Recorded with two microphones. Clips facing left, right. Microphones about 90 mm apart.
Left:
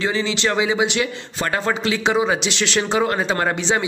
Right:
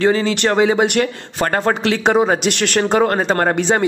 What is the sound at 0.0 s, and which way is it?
Speech, 50° right (ahead or behind).